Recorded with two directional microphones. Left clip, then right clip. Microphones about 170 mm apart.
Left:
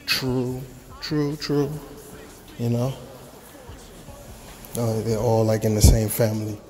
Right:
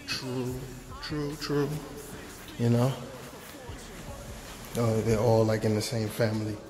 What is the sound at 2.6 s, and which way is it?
Speech, 5° left (ahead or behind).